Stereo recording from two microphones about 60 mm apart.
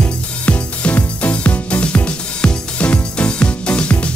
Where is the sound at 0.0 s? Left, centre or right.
Left.